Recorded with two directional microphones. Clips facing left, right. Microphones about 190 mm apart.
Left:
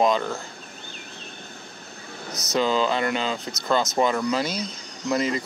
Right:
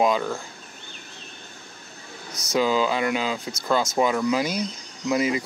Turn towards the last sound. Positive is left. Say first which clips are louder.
# right 1 dB
turn(degrees=-10)  # may be behind; listen again after turning